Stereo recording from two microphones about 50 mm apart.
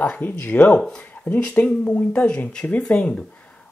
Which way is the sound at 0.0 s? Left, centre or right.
Left.